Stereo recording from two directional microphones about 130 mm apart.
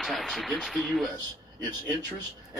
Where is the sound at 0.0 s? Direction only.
Centre (ahead or behind).